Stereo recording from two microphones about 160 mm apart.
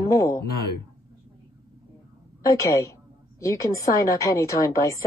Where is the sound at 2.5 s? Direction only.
20° left (ahead or behind).